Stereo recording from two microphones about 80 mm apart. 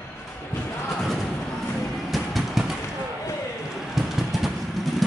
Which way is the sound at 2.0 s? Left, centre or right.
Centre.